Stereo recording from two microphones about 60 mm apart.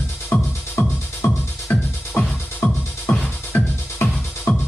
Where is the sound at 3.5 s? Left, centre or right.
Left.